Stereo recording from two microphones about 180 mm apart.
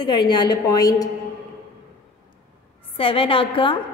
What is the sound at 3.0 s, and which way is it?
Speech, 30° left (ahead or behind).